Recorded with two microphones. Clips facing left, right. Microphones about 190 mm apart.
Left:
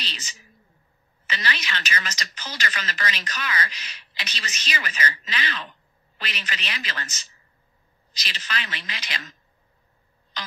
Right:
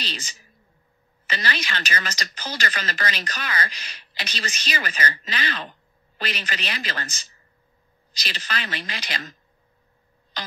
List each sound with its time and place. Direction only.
0.0 s speech: 35° right (ahead or behind)